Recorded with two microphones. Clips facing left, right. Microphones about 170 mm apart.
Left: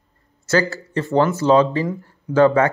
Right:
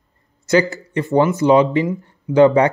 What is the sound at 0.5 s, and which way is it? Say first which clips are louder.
Speech: right 3 dB; 15° right (ahead or behind).